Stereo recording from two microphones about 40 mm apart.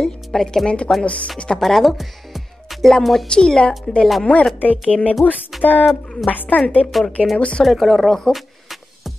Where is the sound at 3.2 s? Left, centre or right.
Centre.